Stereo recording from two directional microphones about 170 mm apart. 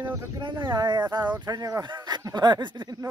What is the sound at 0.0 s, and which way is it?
Speech, 25° right (ahead or behind).